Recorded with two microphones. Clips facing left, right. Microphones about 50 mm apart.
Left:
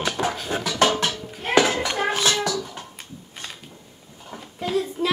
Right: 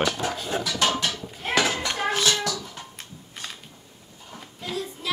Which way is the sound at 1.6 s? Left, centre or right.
Centre.